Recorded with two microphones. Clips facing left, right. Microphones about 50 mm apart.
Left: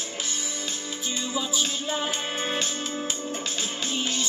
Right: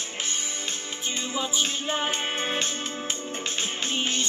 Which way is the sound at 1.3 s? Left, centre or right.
Right.